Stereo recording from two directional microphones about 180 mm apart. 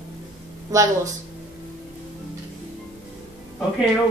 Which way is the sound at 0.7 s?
20° right (ahead or behind).